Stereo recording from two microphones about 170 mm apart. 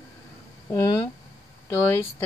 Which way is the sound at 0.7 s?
20° left (ahead or behind).